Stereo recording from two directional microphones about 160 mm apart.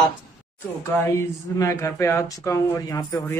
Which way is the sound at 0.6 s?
15° left (ahead or behind).